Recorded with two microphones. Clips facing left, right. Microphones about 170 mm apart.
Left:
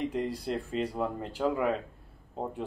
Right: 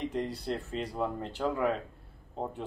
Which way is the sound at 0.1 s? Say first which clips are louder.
Left 2 dB; 10° left (ahead or behind).